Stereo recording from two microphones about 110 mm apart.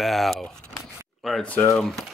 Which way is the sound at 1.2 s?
Centre (ahead or behind).